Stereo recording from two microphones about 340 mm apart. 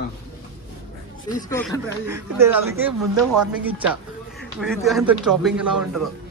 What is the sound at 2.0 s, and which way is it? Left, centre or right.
Speech, centre.